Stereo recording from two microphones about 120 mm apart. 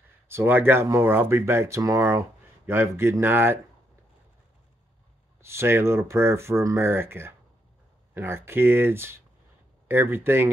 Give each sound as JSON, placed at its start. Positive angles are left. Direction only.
{"t": 0.3, "sound": "speech", "side_deg": -15}
{"t": 5.4, "sound": "speech", "side_deg": -20}